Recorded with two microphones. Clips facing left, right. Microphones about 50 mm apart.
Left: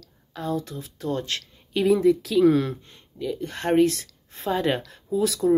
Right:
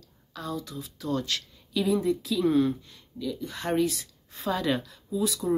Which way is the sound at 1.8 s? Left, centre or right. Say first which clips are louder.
Left 7 dB; left.